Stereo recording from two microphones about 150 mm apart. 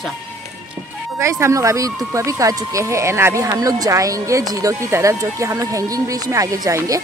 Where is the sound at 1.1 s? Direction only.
20° right (ahead or behind).